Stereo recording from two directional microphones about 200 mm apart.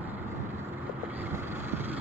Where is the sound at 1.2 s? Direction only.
10° right (ahead or behind).